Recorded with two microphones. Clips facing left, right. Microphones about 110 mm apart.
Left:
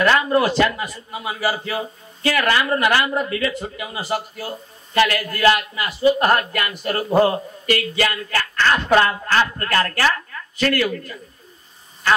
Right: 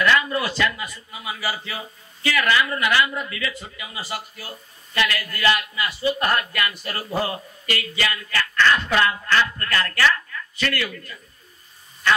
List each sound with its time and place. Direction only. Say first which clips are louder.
0.0 s a man's voice: left 4 dB; 40° left (ahead or behind)